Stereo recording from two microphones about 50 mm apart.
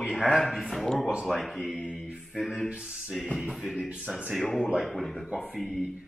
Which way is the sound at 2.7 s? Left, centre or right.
Right.